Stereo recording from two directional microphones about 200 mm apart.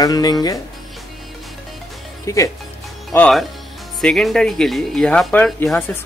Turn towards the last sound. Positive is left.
turn(degrees=5)  # may be behind; listen again after turning